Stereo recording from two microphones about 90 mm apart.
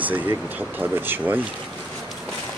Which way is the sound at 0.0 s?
20° right (ahead or behind).